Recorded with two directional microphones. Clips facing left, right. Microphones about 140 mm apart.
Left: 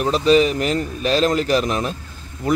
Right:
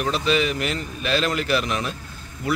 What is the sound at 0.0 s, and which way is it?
Speech, 40° left (ahead or behind).